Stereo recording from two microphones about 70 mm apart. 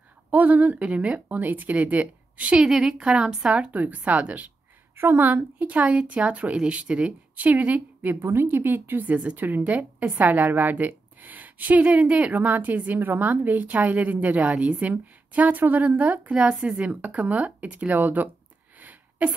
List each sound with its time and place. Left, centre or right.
0.3 s a woman's voice: right
4.9 s a woman's voice: right
8.2 s a woman's voice: right
18.8 s a sound: right